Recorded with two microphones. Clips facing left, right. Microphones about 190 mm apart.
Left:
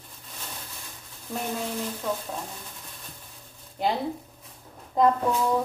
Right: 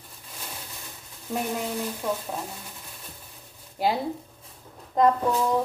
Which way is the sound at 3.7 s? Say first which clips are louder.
Right 1 dB; 5° right (ahead or behind).